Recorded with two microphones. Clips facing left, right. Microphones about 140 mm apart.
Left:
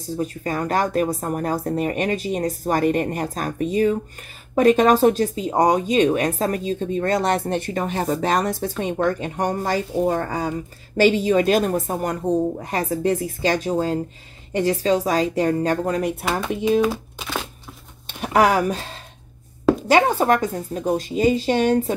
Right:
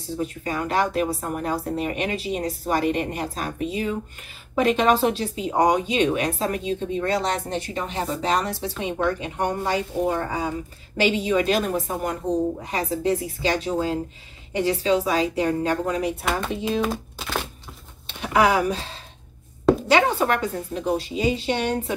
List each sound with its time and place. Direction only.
0.2 s speech: 40° left (ahead or behind)
16.8 s crumpling: 5° left (ahead or behind)
18.2 s speech: 50° left (ahead or behind)
19.9 s speech: 45° left (ahead or behind)